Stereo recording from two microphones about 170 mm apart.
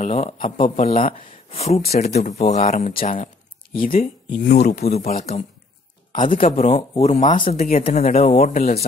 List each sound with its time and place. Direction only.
0.0 s speech: 45° left (ahead or behind)
3.7 s speech: 55° left (ahead or behind)
4.8 s speech: 40° left (ahead or behind)
7.4 s speech: 55° left (ahead or behind)
7.8 s speech: 40° left (ahead or behind)